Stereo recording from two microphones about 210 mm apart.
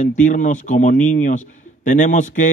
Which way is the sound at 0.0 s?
35° left (ahead or behind).